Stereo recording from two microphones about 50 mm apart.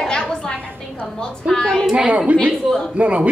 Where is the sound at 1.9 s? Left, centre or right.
Centre.